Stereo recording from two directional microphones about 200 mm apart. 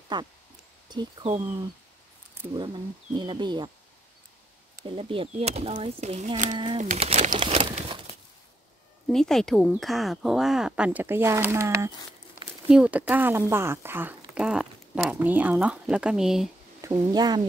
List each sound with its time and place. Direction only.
0.1 s speech: 20° right (ahead or behind)
2.5 s speech: 25° right (ahead or behind)
4.8 s speech: 25° right (ahead or behind)
7.3 s crumpling: 25° right (ahead or behind)
9.1 s speech: centre (ahead or behind)
16.8 s speech: 20° right (ahead or behind)